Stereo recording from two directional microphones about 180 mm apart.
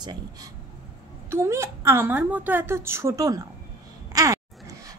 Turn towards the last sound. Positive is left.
turn(degrees=-20)  # may be behind; listen again after turning